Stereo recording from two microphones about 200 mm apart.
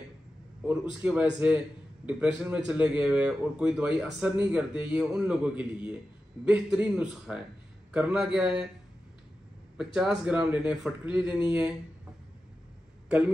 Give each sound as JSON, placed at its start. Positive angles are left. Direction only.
{"t": 0.7, "sound": "speech", "side_deg": -5}
{"t": 9.8, "sound": "speech", "side_deg": -5}